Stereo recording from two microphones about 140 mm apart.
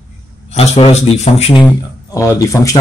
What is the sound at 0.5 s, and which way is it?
A man's voice, 45° left (ahead or behind).